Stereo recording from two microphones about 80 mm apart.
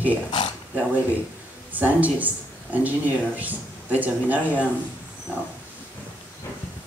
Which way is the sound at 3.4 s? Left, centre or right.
Right.